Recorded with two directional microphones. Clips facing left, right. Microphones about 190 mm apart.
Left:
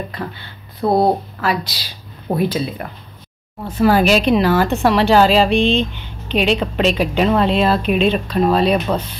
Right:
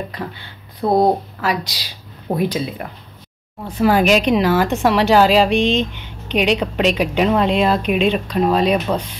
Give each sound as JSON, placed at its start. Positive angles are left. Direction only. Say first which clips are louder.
{"t": 0.7, "sound": "a woman's voice", "louder": "even", "side_deg": -15}